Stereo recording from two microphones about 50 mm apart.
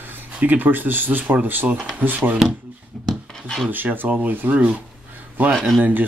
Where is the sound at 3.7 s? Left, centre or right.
Right.